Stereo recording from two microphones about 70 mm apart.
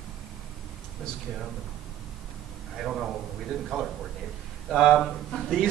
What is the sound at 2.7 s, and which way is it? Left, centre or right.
A man's voice, centre.